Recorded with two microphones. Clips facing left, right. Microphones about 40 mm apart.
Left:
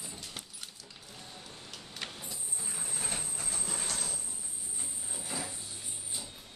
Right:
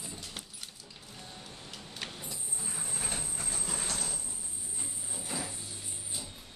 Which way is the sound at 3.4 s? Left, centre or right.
Centre.